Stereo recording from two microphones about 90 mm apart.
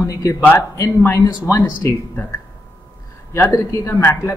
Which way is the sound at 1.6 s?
25° left (ahead or behind).